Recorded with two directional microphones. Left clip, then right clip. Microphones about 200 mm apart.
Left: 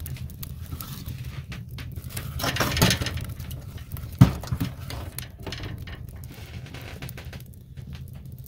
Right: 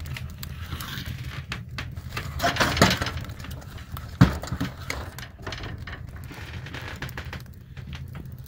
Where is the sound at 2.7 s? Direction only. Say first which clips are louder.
Right 3 dB; 60° left (ahead or behind).